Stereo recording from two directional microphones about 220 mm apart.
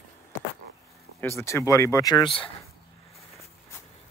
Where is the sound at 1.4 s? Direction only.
10° left (ahead or behind).